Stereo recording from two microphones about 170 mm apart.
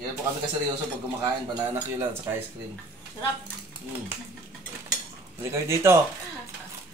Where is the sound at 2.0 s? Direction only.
15° right (ahead or behind).